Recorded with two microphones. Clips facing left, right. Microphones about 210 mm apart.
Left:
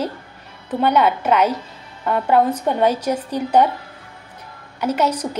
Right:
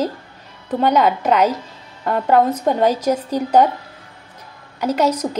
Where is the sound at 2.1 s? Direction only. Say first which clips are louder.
Right 1 dB; 10° right (ahead or behind).